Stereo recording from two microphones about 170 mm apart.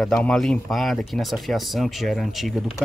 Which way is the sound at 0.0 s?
5° left (ahead or behind).